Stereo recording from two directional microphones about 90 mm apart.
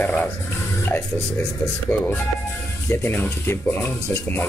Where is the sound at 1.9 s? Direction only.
20° left (ahead or behind).